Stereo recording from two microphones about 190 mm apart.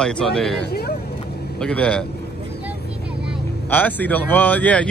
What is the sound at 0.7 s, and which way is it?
Vehicle, 55° left (ahead or behind).